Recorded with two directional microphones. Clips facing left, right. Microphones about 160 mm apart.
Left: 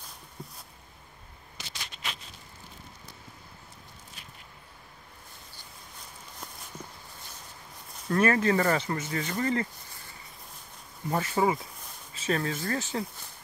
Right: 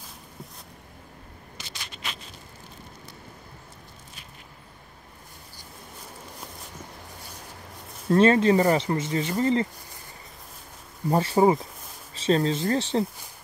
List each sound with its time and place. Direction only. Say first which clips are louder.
8.1 s speech: right 6 dB; 25° right (ahead or behind)
11.1 s speech: right 6 dB; 35° right (ahead or behind)